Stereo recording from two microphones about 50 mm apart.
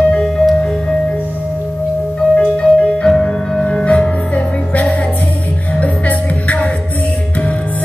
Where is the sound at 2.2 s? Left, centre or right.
Left.